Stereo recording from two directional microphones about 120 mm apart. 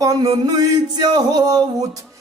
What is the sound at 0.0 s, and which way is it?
Music, 30° right (ahead or behind).